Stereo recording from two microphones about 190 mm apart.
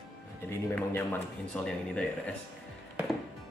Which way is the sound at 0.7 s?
10° left (ahead or behind).